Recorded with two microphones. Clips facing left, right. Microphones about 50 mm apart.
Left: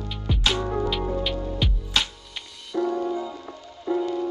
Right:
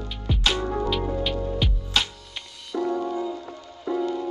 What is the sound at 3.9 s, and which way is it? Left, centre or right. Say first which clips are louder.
Music: left 1 dB; centre.